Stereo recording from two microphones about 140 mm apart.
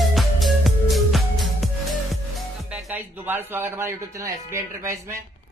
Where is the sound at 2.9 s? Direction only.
15° right (ahead or behind).